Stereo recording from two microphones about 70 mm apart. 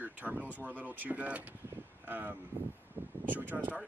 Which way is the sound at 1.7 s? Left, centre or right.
Right.